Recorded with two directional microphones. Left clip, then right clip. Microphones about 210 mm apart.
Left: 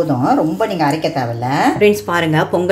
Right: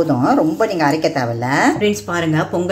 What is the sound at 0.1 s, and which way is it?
Speech, 25° right (ahead or behind).